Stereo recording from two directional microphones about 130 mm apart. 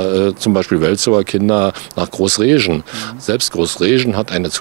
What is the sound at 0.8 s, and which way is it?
Speech, 5° right (ahead or behind).